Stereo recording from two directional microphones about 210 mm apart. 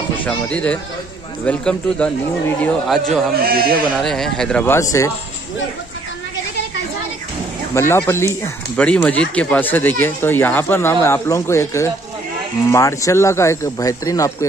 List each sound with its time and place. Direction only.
0.2 s speech: 5° left (ahead or behind)
3.3 s speech: 45° right (ahead or behind)
4.0 s speech: centre (ahead or behind)
7.9 s speech: 10° left (ahead or behind)